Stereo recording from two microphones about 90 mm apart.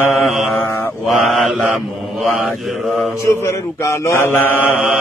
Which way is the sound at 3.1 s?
30° left (ahead or behind).